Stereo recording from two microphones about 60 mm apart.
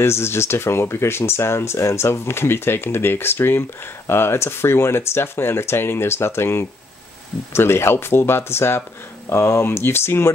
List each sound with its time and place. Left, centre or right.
0.0 s speech: left